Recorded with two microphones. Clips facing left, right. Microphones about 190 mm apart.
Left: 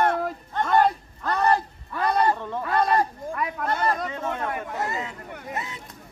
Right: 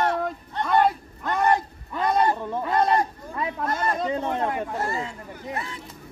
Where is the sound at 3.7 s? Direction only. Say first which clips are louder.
Left 3 dB; 30° left (ahead or behind).